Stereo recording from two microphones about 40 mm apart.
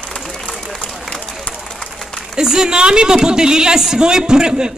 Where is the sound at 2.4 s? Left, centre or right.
Centre.